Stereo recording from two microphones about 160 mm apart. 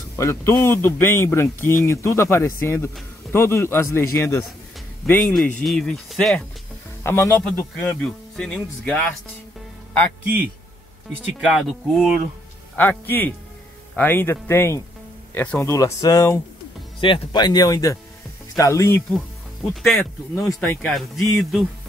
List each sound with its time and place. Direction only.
0.1 s a man's voice: 15° left (ahead or behind)
5.3 s speech: centre (ahead or behind)
7.0 s speech: 15° left (ahead or behind)
7.5 s speech: 5° left (ahead or behind)
11.3 s speech: 5° right (ahead or behind)
12.7 s a man's voice: 10° left (ahead or behind)
15.7 s speech: 20° left (ahead or behind)
19.7 s speech: centre (ahead or behind)
20.0 s speech: 20° left (ahead or behind)
20.6 s speech: 5° left (ahead or behind)